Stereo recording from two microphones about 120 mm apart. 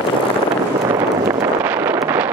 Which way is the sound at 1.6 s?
20° right (ahead or behind).